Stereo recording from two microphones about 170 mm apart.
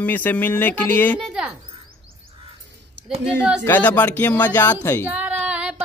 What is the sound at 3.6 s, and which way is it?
Speech, 10° left (ahead or behind).